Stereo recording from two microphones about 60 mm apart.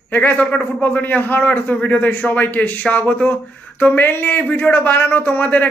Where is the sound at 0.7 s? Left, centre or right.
Left.